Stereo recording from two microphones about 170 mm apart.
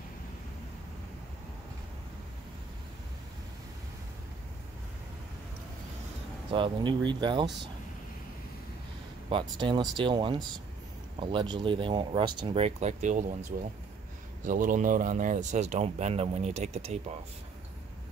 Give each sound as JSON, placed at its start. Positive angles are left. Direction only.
{"t": 6.5, "sound": "speech", "side_deg": -30}
{"t": 9.3, "sound": "speech", "side_deg": -30}
{"t": 11.5, "sound": "speech", "side_deg": -30}